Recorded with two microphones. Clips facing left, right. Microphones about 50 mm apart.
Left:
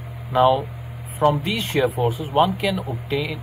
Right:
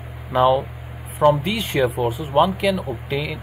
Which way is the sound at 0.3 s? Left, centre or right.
Centre.